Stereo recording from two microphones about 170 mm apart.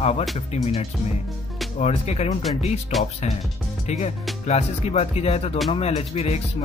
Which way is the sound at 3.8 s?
40° left (ahead or behind).